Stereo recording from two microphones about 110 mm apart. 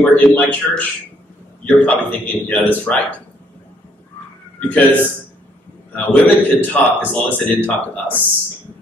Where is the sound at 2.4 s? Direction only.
15° left (ahead or behind).